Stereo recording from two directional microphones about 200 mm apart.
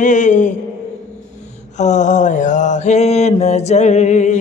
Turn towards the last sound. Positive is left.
turn(degrees=35)  # may be behind; listen again after turning